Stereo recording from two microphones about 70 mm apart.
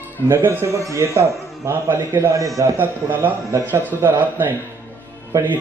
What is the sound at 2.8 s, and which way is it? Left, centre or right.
Speech, right.